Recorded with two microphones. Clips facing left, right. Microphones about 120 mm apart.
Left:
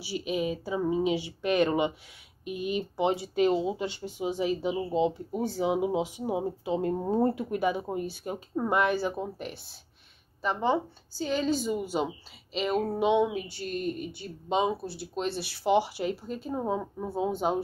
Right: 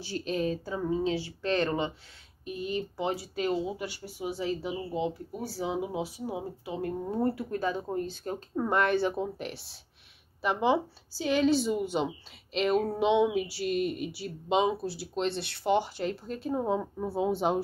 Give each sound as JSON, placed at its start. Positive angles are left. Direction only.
{"t": 0.0, "sound": "speech", "side_deg": 10}